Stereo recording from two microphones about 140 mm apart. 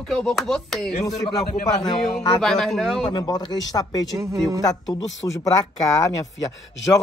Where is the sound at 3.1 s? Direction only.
30° left (ahead or behind).